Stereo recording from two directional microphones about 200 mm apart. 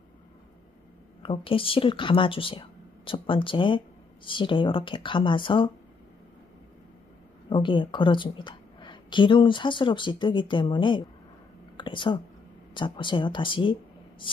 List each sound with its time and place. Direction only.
1.2 s a woman's voice: 25° left (ahead or behind)
7.4 s a woman's voice: 25° left (ahead or behind)
11.7 s whispering: 25° left (ahead or behind)
12.7 s a woman's voice: 25° left (ahead or behind)